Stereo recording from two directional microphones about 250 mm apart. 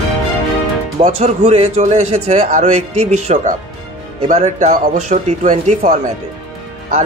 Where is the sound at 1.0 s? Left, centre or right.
Right.